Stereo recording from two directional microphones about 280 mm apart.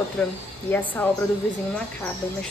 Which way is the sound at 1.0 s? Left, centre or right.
Centre.